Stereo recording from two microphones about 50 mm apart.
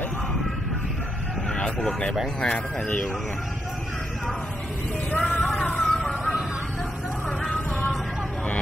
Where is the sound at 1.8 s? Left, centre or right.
Centre.